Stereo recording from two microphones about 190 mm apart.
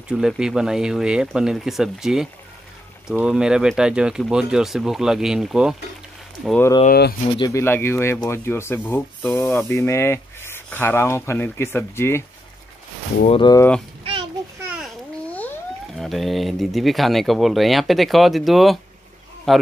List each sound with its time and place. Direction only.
0.1 s speech: centre (ahead or behind)
6.9 s speech: 55° left (ahead or behind)
7.3 s speech: 20° left (ahead or behind)
13.4 s speech: 20° left (ahead or behind)
16.0 s speech: centre (ahead or behind)